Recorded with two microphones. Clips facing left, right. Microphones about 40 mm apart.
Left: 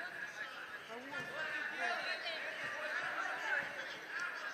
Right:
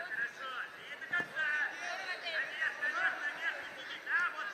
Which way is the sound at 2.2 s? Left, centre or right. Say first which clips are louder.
Right 6 dB; centre.